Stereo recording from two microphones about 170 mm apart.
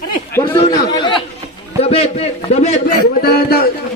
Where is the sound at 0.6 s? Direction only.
25° left (ahead or behind).